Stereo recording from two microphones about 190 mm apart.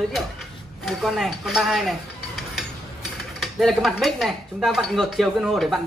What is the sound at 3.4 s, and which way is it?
Speech, centre (ahead or behind).